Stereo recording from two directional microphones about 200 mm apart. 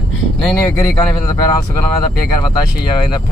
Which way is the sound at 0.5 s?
15° left (ahead or behind).